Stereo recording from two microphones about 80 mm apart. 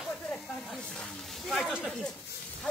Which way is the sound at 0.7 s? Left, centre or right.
Centre.